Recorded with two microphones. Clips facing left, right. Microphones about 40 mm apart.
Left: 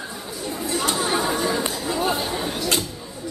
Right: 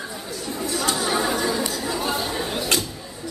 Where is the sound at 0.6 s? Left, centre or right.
Left.